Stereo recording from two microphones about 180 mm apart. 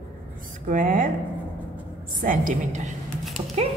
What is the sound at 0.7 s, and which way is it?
Speech, 50° right (ahead or behind).